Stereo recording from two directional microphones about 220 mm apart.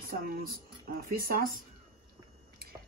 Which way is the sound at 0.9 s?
40° right (ahead or behind).